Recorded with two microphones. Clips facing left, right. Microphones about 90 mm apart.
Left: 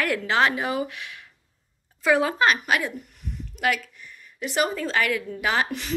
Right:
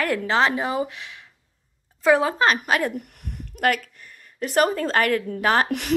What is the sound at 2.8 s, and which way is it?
Speech, 50° right (ahead or behind).